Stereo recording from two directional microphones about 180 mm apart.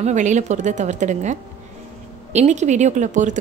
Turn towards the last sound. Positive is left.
turn(degrees=-45)  # may be behind; listen again after turning